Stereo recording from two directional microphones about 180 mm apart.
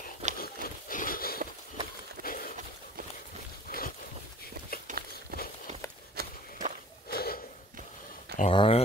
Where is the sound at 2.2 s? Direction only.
50° left (ahead or behind).